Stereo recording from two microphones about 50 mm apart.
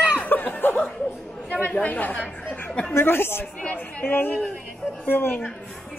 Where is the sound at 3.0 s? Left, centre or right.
Left.